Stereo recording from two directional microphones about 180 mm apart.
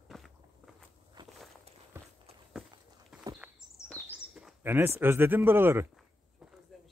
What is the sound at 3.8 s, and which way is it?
Bird, 5° right (ahead or behind).